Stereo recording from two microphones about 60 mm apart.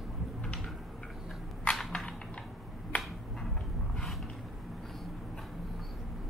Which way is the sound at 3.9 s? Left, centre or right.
Centre.